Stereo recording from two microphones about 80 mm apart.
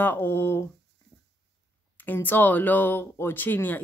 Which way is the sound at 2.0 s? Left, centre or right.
Left.